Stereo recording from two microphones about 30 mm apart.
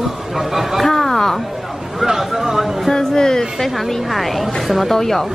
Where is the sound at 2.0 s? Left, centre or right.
Centre.